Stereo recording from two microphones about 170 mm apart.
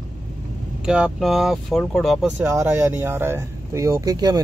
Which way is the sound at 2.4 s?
15° right (ahead or behind).